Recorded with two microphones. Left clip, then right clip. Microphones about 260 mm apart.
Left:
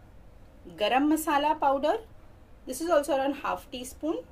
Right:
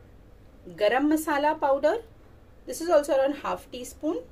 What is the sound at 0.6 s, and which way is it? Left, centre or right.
A woman's voice, left.